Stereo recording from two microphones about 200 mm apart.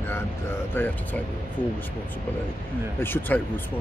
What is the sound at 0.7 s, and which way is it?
Speech, 5° left (ahead or behind).